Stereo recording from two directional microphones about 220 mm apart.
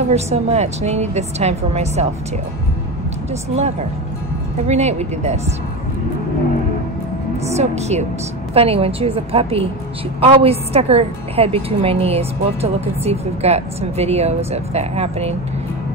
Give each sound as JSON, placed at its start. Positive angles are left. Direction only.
{"t": 0.1, "sound": "a woman's voice", "side_deg": -30}
{"t": 3.4, "sound": "a woman's voice", "side_deg": -30}
{"t": 7.5, "sound": "a woman's voice", "side_deg": -30}